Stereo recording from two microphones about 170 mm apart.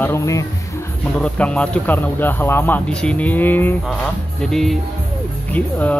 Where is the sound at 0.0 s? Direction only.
15° left (ahead or behind).